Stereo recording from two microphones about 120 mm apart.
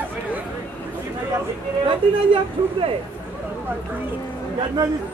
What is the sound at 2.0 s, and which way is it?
Speech, 45° right (ahead or behind).